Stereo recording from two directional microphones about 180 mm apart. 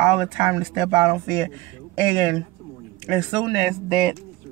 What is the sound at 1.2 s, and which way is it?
Speech, 5° left (ahead or behind).